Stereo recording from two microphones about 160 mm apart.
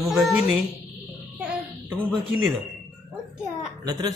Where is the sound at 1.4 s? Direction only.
5° right (ahead or behind).